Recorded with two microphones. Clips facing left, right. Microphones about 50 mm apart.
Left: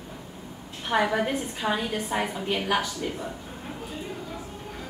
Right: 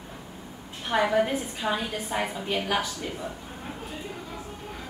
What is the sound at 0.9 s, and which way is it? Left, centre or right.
A woman's voice, centre.